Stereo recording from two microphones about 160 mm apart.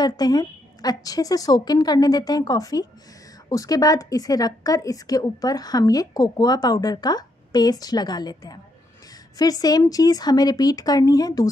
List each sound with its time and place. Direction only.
0.0 s a woman's voice: 25° left (ahead or behind)